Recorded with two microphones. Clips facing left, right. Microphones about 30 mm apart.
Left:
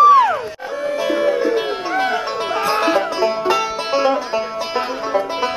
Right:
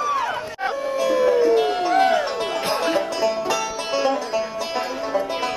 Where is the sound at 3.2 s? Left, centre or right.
Left.